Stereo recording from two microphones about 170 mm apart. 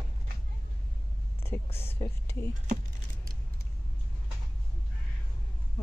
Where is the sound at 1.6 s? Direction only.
35° left (ahead or behind).